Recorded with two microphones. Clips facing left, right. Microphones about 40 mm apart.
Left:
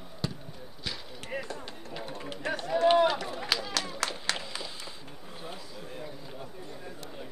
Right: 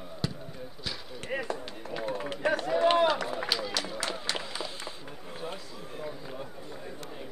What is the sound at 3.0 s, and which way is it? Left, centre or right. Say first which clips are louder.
Run: right 1 dB; centre.